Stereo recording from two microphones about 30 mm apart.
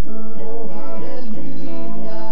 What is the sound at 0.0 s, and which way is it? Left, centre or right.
Music, right.